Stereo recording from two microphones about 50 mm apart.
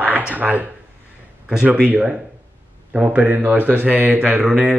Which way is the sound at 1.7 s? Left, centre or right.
Right.